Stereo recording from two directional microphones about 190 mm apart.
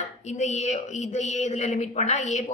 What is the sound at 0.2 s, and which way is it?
A woman's voice, 35° left (ahead or behind).